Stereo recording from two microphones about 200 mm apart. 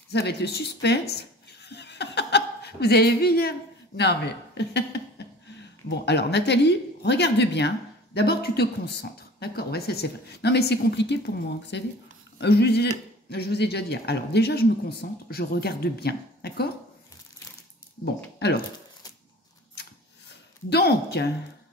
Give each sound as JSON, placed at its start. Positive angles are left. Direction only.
{"t": 0.1, "sound": "speech", "side_deg": 55}
{"t": 20.7, "sound": "speech", "side_deg": 55}